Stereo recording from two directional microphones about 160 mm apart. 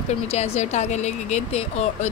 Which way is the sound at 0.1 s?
45° left (ahead or behind).